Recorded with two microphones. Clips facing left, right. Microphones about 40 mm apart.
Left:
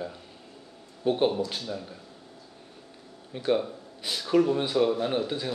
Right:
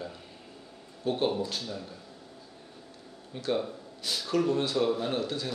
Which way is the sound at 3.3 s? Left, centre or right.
Centre.